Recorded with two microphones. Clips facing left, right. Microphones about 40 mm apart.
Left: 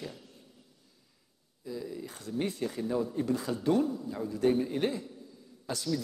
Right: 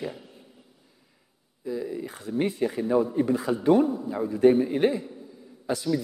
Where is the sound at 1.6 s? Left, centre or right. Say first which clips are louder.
Right 7 dB; right.